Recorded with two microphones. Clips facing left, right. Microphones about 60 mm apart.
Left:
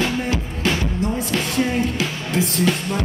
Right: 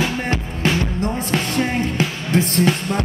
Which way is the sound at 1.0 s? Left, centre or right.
Right.